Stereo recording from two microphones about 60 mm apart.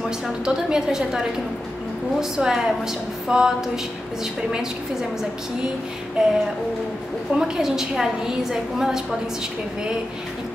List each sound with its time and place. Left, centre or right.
0.5 s a woman's voice: centre
6.2 s a woman's voice: centre
7.3 s a woman's voice: centre